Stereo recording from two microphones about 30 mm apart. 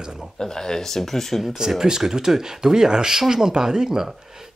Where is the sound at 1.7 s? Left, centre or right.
Centre.